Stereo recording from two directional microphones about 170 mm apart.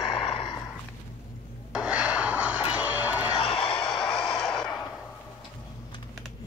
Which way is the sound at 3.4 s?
35° left (ahead or behind).